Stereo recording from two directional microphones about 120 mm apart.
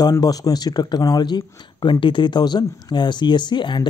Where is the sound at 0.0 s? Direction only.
30° left (ahead or behind).